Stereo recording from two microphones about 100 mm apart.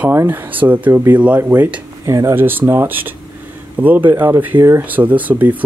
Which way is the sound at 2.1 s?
30° right (ahead or behind).